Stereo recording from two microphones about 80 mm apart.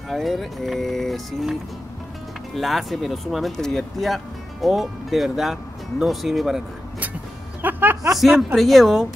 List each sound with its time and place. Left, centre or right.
0.1 s speech: centre
7.6 s music: right
8.2 s speech: centre